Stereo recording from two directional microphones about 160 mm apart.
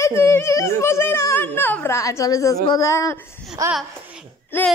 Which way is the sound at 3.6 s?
20° right (ahead or behind).